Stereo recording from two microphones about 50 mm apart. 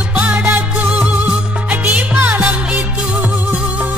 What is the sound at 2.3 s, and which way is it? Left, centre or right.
Music, right.